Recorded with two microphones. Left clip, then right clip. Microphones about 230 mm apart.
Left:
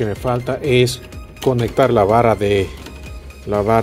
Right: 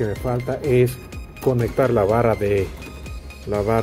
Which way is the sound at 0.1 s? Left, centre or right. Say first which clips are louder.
Left 4 dB; left.